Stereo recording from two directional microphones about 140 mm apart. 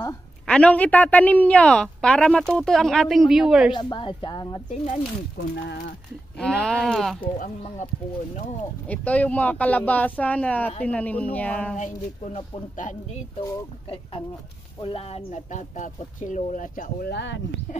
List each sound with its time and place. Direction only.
0.5 s a woman's voice: 10° left (ahead or behind)
3.7 s a woman's voice: 35° left (ahead or behind)
4.6 s speech: 60° left (ahead or behind)
6.4 s a woman's voice: 5° left (ahead or behind)
8.8 s speech: 10° left (ahead or behind)
11.7 s speech: 60° left (ahead or behind)
14.8 s speech: 40° left (ahead or behind); by 17.1 s 70° left (ahead or behind)